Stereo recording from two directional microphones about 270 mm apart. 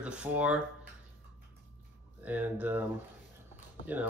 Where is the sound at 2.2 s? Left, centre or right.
Centre.